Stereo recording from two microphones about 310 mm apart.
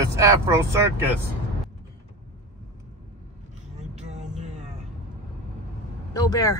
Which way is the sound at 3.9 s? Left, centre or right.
Right.